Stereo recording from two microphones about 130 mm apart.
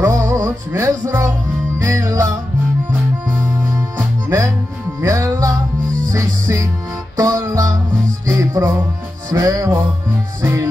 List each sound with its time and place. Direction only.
0.0 s music: 25° right (ahead or behind)
5.0 s music: 25° right (ahead or behind)